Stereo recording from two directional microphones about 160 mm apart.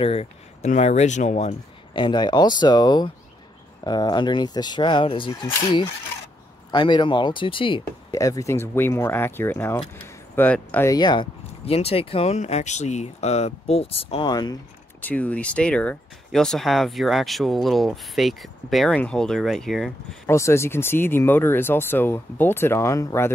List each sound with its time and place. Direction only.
0.0 s speech: 40° left (ahead or behind)
2.0 s speech: 30° left (ahead or behind)
8.1 s speech: 20° left (ahead or behind)
10.9 s speech: 25° left (ahead or behind)
11.6 s speech: 40° left (ahead or behind)
14.3 s speech: 25° left (ahead or behind)
15.0 s speech: 10° left (ahead or behind)
20.2 s speech: 15° left (ahead or behind)